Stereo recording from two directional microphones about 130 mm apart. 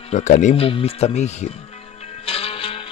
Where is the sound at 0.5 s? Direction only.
45° left (ahead or behind).